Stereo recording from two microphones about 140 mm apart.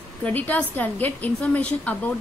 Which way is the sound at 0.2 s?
10° left (ahead or behind).